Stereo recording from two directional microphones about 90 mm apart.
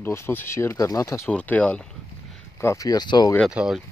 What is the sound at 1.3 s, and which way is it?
Speech, 15° left (ahead or behind).